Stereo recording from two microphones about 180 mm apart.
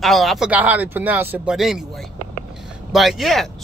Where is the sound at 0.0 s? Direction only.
Centre (ahead or behind).